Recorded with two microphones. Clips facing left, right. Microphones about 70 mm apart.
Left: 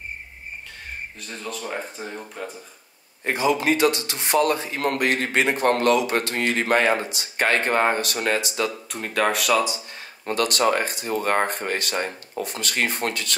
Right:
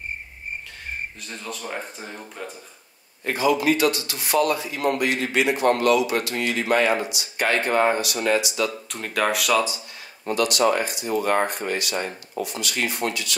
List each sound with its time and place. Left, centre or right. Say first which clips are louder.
1.2 s speech: left 1 dB; centre
3.3 s a man's voice: right 1 dB; left
8.8 s speech: left 1 dB; centre
10.2 s speech: right 1 dB; left